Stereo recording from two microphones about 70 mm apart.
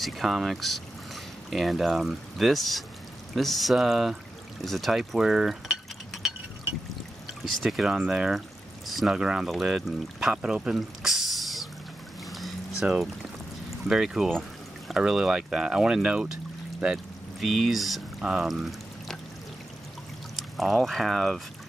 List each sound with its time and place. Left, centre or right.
0.0 s speech: centre
7.6 s speech: centre
12.3 s pour: centre
12.8 s speech: centre
13.8 s speech: centre
20.3 s speech: centre